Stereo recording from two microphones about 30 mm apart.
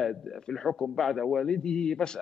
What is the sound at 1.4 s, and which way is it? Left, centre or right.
Speech, left.